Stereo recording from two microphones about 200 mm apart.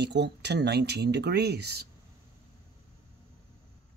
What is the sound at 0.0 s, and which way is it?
Speech, 60° right (ahead or behind).